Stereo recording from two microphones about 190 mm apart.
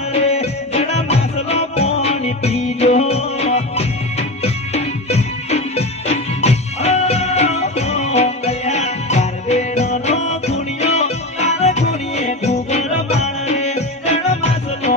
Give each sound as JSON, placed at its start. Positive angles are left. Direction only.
{"t": 0.1, "sound": "music", "side_deg": 35}